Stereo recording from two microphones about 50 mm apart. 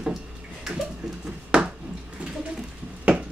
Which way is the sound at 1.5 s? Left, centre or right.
Right.